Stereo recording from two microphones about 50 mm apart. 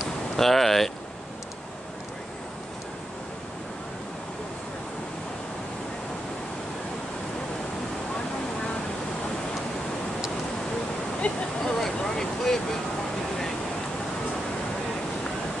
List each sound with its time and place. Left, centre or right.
0.4 s speech: centre
11.1 s a sound: left
11.8 s vehicle: centre